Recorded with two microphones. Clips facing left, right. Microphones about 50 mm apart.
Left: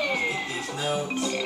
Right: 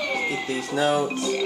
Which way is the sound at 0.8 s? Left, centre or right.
Right.